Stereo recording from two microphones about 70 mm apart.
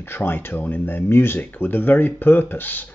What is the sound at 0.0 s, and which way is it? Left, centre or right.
Speech, left.